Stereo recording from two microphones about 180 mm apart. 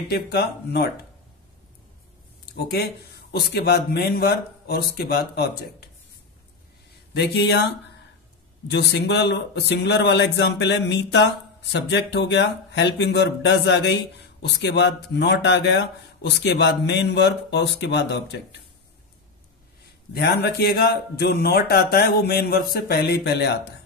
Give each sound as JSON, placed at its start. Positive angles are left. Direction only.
{"t": 0.1, "sound": "speech", "side_deg": 65}
{"t": 2.5, "sound": "speech", "side_deg": 65}
{"t": 7.2, "sound": "a man's voice", "side_deg": 70}
{"t": 20.1, "sound": "speech", "side_deg": 65}